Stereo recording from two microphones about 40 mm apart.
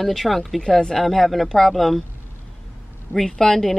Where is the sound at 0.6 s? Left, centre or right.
Centre.